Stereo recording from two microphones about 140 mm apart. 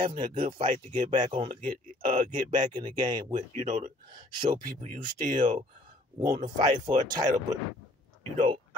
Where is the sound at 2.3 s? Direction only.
30° right (ahead or behind).